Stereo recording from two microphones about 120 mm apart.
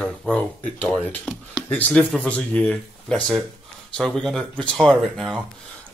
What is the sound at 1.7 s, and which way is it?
Speech, 15° left (ahead or behind).